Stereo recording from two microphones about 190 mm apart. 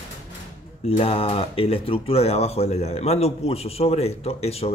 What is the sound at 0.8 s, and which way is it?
A man's voice, 35° left (ahead or behind).